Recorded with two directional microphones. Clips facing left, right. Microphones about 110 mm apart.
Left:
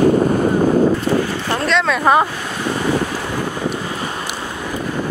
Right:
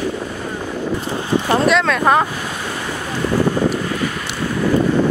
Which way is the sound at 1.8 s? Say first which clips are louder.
Left 1 dB; centre (ahead or behind).